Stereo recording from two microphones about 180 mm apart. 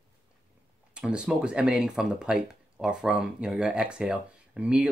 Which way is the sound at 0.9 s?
5° right (ahead or behind).